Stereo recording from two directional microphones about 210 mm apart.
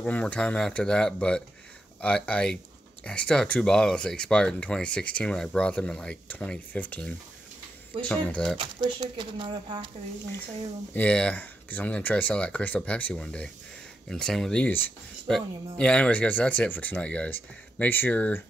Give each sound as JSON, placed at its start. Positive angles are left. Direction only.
{"t": 0.0, "sound": "speech", "side_deg": 5}
{"t": 8.5, "sound": "speech", "side_deg": -20}
{"t": 11.0, "sound": "speech", "side_deg": 5}